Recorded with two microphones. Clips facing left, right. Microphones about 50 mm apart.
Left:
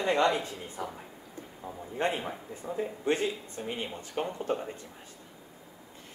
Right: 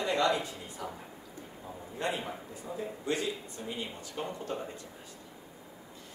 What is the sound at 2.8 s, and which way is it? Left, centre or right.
Speech, left.